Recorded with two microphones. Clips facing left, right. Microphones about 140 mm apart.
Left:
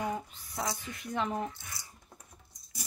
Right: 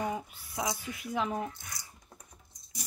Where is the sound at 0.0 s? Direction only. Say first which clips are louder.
Right 1 dB; 5° right (ahead or behind).